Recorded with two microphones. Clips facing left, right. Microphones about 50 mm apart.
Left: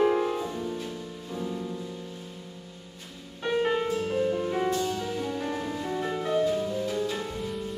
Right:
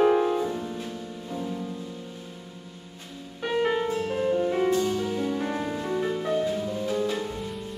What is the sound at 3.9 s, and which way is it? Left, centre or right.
Music, right.